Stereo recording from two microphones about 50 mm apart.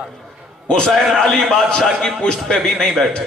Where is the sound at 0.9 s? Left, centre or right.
Centre.